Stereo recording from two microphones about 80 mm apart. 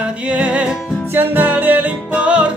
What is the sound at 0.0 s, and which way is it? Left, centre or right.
Music, centre.